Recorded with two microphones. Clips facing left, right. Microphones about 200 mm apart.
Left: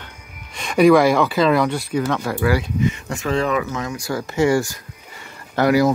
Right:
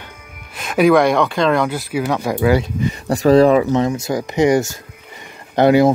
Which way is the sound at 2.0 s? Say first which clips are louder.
Right 6 dB; 15° right (ahead or behind).